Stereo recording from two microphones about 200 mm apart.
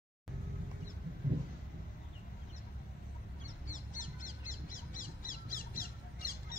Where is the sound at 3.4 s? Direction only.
40° left (ahead or behind).